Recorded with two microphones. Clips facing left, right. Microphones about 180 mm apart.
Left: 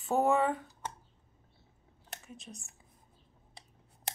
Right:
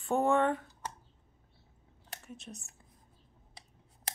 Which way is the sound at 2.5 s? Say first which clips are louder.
Right 1 dB; centre (ahead or behind).